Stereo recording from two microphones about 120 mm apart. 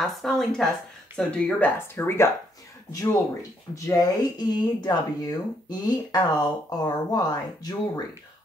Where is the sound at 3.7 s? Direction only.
25° left (ahead or behind).